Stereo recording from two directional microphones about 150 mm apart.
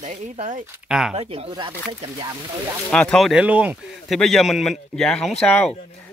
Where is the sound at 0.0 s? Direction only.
55° right (ahead or behind).